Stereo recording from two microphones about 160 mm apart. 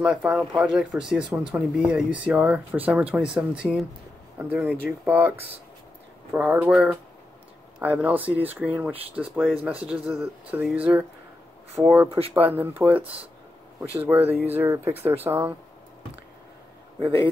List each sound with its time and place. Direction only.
0.0 s speech: 5° right (ahead or behind)
17.0 s a man's voice: 35° right (ahead or behind)